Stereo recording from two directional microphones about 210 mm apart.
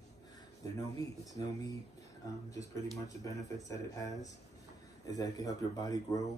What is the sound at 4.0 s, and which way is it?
Speech, 15° left (ahead or behind).